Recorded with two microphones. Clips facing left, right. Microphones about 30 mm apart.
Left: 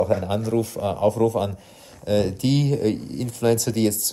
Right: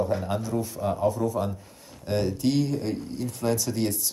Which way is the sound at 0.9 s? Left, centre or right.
Left.